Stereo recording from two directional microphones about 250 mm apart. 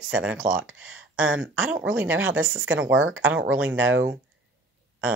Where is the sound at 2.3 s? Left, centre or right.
Right.